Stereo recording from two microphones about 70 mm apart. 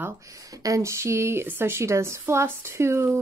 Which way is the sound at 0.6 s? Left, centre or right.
Right.